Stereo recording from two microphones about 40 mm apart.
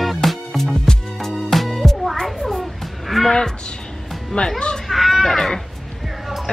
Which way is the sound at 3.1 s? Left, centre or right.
Centre.